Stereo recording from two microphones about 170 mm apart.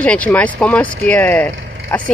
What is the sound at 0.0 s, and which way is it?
Speech, 10° left (ahead or behind).